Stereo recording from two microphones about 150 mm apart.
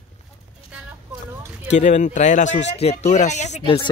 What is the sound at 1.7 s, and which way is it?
Speech, 50° left (ahead or behind).